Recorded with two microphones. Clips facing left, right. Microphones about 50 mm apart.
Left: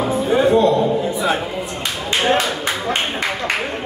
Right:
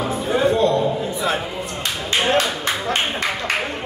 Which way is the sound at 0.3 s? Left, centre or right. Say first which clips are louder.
Left 3 dB; centre.